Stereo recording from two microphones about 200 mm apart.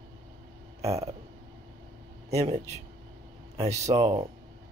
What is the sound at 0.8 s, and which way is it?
Burping, 30° right (ahead or behind).